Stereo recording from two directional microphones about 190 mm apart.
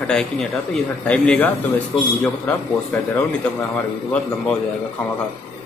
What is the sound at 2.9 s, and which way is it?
Speech, 10° left (ahead or behind).